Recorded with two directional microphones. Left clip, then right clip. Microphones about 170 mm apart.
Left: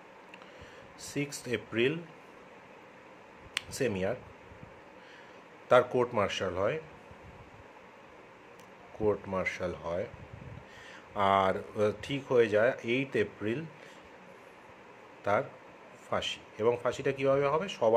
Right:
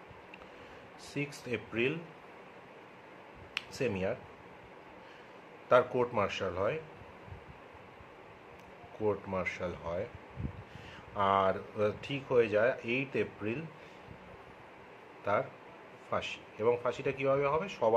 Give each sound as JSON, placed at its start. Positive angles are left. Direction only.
{"t": 1.1, "sound": "speech", "side_deg": 25}
{"t": 3.5, "sound": "speech", "side_deg": 25}
{"t": 5.7, "sound": "speech", "side_deg": 25}
{"t": 9.0, "sound": "speech", "side_deg": 20}
{"t": 11.1, "sound": "speech", "side_deg": 30}
{"t": 15.3, "sound": "speech", "side_deg": 30}